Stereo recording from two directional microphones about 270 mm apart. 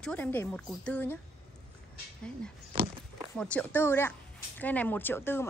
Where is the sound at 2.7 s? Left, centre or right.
Right.